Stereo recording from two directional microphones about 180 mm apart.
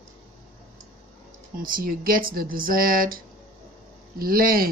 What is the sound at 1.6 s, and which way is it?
Speech, 50° right (ahead or behind).